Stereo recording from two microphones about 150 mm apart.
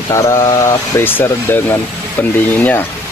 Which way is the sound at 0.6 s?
20° left (ahead or behind).